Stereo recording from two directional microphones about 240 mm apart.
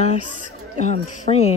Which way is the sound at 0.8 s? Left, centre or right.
Left.